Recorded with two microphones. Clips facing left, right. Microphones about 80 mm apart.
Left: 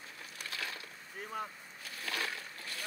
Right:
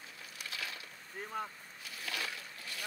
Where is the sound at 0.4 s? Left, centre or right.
Left.